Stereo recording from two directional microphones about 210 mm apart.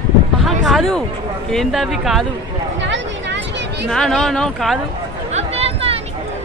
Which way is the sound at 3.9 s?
Centre (ahead or behind).